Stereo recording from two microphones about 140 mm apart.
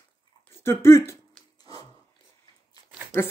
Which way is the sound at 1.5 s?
30° left (ahead or behind).